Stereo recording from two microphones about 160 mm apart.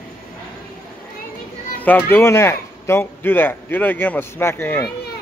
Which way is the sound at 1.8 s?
10° left (ahead or behind).